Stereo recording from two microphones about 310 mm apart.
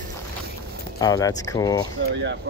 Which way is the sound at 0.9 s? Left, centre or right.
Centre.